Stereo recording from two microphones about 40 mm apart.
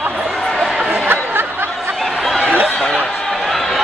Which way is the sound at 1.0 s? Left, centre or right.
Right.